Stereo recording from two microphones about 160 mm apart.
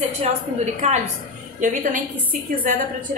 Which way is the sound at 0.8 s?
50° right (ahead or behind).